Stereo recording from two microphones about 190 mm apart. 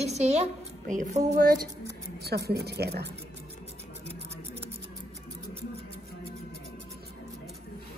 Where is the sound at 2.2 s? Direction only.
55° right (ahead or behind).